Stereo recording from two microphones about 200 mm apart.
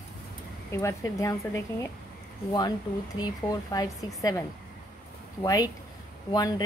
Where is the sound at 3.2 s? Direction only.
20° left (ahead or behind).